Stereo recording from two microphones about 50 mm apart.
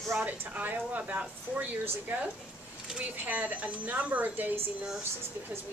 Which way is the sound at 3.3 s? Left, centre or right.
Right.